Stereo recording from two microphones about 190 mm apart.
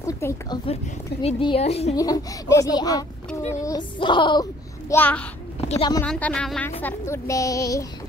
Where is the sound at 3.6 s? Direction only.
25° left (ahead or behind); by 5.3 s 10° left (ahead or behind).